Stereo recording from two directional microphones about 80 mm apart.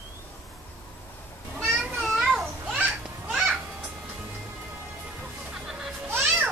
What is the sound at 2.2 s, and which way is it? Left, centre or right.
Children playing, centre.